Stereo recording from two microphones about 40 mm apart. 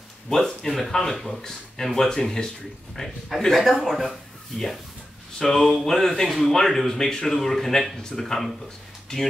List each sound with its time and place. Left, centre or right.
0.3 s a man's voice: centre
5.4 s speech: centre